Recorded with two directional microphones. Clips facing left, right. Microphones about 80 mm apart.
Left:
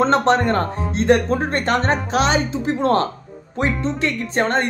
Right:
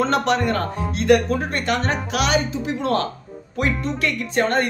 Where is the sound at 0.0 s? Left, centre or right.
Left.